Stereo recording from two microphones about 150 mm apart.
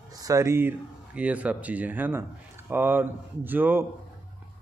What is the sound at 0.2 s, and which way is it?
A man's voice, 20° right (ahead or behind).